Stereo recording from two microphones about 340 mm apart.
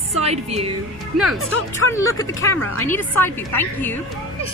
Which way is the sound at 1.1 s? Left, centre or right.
Centre.